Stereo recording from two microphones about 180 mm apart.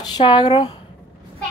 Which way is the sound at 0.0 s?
25° left (ahead or behind).